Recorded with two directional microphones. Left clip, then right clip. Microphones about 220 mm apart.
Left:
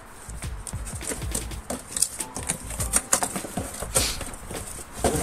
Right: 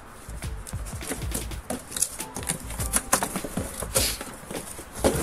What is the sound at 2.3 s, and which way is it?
Clip-clop, 5° right (ahead or behind).